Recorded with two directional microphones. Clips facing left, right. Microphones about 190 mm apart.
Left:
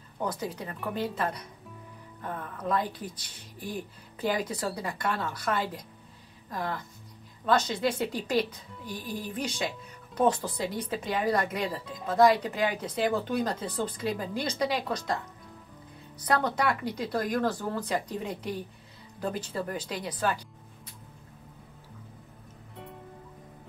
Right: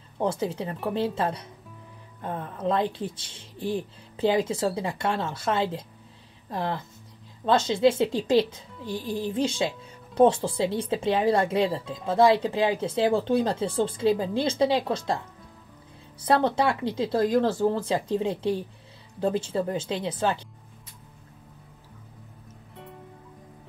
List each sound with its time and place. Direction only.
0.2 s speech: 25° right (ahead or behind)
16.2 s speech: 30° right (ahead or behind)